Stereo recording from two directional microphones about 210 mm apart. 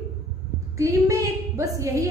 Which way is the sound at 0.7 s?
15° right (ahead or behind).